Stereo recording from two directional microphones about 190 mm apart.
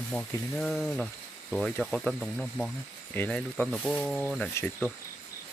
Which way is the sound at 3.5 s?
Centre (ahead or behind).